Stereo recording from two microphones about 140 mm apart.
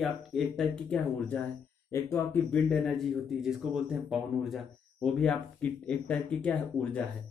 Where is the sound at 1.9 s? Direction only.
20° left (ahead or behind).